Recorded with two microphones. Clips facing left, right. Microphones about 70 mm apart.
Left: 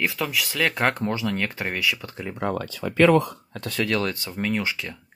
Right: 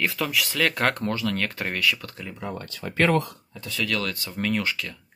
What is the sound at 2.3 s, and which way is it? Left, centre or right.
Speech, left.